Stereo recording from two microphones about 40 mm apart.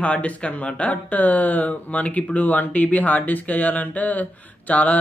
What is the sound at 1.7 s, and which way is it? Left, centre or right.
Speech, left.